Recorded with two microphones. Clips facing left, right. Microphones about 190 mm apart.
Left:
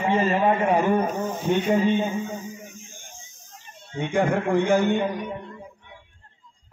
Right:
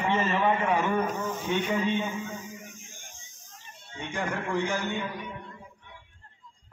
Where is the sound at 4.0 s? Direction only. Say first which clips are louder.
Left 10 dB; 55° left (ahead or behind).